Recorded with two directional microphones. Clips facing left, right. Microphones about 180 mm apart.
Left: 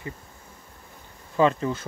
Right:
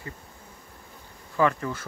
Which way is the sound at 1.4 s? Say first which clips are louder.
Left 3 dB; 20° left (ahead or behind).